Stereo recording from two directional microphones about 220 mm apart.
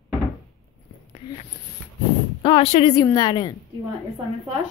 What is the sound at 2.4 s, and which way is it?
A child's voice, 25° left (ahead or behind).